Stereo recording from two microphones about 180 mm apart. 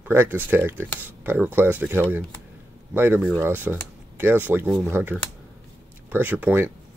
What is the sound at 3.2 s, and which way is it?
Speech, 10° left (ahead or behind).